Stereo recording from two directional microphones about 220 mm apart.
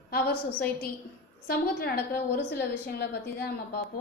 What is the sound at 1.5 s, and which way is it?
A woman's voice, 45° left (ahead or behind).